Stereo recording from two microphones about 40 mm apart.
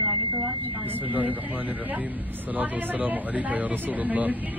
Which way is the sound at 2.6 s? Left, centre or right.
Right.